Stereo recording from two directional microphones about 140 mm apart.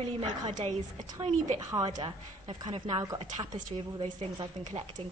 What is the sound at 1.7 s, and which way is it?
Speech, 25° right (ahead or behind).